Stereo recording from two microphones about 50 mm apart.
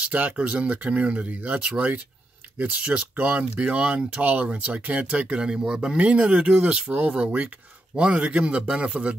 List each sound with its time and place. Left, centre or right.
0.1 s speech: right
5.9 s speech: right